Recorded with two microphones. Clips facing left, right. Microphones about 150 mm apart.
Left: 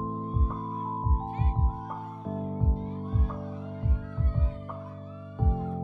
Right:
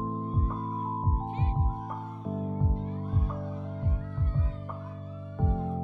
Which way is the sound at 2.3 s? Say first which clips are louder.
Even; 5° left (ahead or behind).